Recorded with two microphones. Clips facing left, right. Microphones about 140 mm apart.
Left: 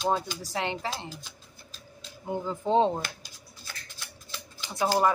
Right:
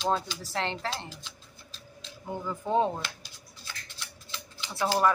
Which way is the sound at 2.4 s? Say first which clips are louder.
Left 3 dB; 25° left (ahead or behind).